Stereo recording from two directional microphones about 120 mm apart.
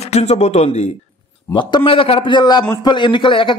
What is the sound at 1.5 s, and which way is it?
A man's voice, 40° left (ahead or behind).